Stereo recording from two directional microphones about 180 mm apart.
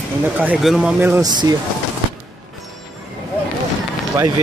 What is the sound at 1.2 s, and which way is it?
Speech, 25° right (ahead or behind).